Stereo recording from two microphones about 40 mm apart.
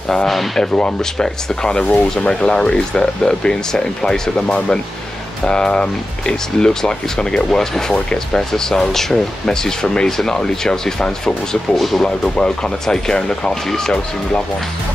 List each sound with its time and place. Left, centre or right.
0.6 s speech: left
11.7 s speech: centre
12.0 s speech: left